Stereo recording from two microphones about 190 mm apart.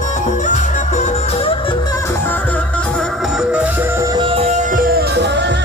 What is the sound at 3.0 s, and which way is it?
Music, 5° right (ahead or behind).